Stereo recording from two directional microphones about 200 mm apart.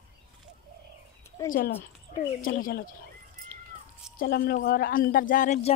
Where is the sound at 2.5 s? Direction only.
45° left (ahead or behind).